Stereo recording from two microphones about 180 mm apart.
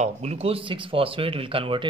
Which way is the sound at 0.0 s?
35° right (ahead or behind).